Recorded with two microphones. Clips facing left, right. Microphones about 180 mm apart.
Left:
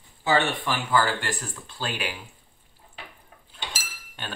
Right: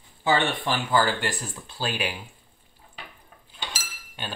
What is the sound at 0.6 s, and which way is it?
Speech, 20° right (ahead or behind).